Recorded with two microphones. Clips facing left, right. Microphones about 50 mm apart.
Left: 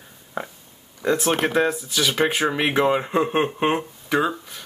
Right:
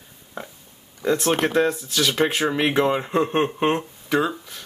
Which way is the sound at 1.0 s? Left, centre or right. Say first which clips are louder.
Even; centre.